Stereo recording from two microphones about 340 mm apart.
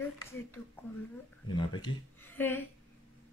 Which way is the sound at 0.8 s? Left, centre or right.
Centre.